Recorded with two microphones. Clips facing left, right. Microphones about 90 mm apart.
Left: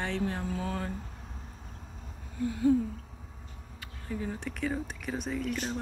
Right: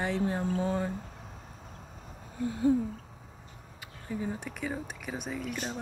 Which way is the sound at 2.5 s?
25° right (ahead or behind).